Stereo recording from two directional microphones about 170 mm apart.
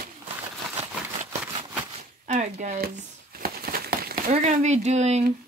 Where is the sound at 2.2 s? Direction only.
45° right (ahead or behind).